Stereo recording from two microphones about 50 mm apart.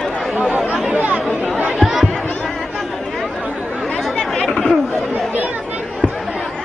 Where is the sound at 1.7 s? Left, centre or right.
Centre.